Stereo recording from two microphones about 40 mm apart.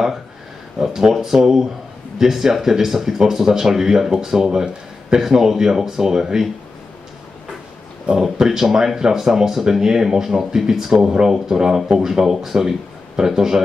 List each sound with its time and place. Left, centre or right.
0.7 s speech: centre
8.1 s speech: centre